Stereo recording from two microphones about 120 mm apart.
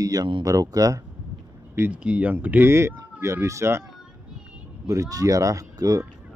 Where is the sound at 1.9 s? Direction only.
10° right (ahead or behind).